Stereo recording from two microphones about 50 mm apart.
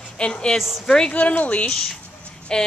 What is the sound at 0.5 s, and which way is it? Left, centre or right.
Speech, centre.